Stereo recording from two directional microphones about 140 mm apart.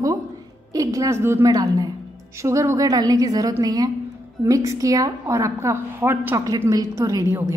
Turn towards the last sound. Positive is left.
turn(degrees=-15)  # may be behind; listen again after turning